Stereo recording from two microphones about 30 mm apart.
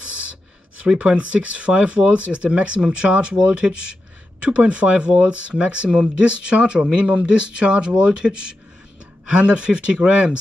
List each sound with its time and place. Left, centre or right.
0.9 s speech: right